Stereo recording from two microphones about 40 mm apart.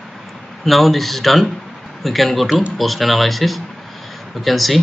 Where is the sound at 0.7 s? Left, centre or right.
Centre.